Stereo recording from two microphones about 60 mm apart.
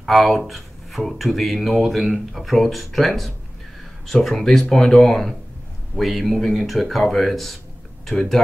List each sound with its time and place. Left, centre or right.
0.0 s speech: centre